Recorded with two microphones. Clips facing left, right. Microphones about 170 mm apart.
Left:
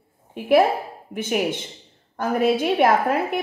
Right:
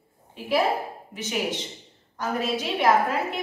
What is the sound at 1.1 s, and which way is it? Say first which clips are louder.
A woman's voice: left 6 dB; 55° left (ahead or behind).